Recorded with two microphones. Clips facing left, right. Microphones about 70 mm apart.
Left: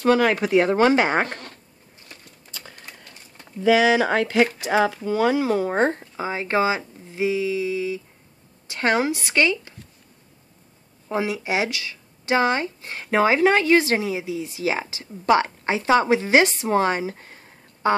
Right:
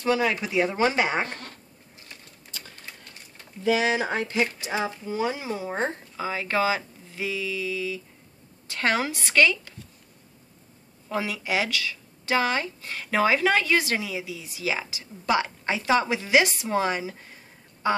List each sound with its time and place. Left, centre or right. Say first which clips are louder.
0.0 s speech: left 6 dB; left
3.7 s a woman's voice: left 7 dB; left
11.1 s speech: left 4 dB; left